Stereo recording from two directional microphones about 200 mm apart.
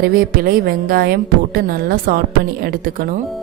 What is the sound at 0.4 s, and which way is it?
A woman's voice, 45° right (ahead or behind).